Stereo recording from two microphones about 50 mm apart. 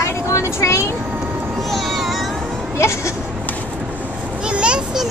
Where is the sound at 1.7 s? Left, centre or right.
Centre.